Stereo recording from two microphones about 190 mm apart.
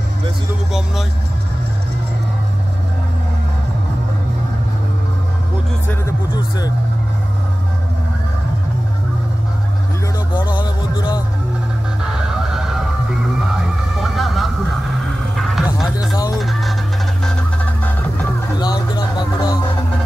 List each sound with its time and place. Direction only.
5.9 s music: 15° left (ahead or behind)
10.3 s music: 25° left (ahead or behind)
12.4 s music: centre (ahead or behind)
13.9 s vehicle: centre (ahead or behind)
16.3 s fowl: centre (ahead or behind)
18.6 s music: 20° left (ahead or behind)